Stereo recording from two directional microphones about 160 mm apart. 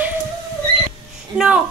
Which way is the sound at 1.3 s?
5° right (ahead or behind).